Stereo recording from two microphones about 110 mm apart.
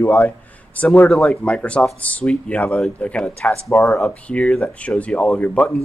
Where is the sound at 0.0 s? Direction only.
20° left (ahead or behind).